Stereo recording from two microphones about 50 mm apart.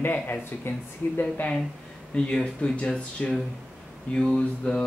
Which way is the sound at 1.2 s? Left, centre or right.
Left.